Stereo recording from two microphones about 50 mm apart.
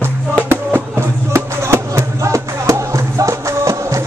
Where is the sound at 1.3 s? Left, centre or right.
Right.